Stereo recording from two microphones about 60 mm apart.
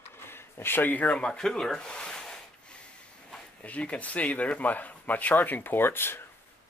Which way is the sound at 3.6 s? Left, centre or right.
Left.